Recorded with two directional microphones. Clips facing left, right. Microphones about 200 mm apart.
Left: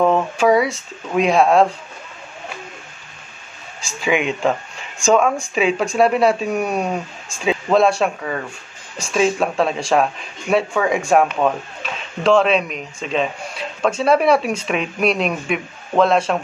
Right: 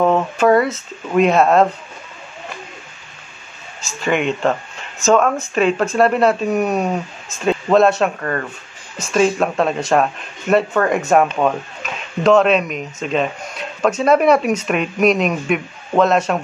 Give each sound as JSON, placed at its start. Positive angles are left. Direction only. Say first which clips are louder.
{"t": 0.0, "sound": "speech", "louder": "right 1 dB", "side_deg": 0}
{"t": 4.0, "sound": "speech", "louder": "right 1 dB", "side_deg": 5}
{"t": 14.5, "sound": "a man's voice", "louder": "right 3 dB", "side_deg": -5}